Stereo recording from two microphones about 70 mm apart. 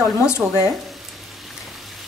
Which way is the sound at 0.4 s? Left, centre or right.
Centre.